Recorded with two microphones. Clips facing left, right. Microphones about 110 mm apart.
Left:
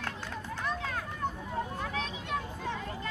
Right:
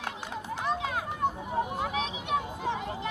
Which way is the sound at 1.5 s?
20° right (ahead or behind).